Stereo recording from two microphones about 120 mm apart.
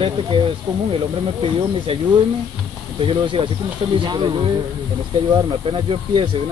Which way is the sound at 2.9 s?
45° right (ahead or behind).